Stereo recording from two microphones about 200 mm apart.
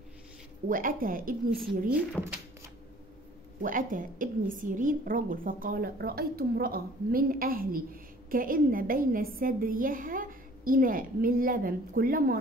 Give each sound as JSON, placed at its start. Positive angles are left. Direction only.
{"t": 0.7, "sound": "a woman's voice", "side_deg": -45}
{"t": 1.9, "sound": "speech", "side_deg": -10}
{"t": 3.6, "sound": "a woman's voice", "side_deg": -45}